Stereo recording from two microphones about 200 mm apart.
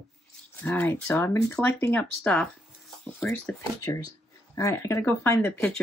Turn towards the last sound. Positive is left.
turn(degrees=10)  # may be behind; listen again after turning